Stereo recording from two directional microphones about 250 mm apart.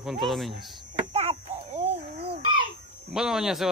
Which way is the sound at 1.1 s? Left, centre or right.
Right.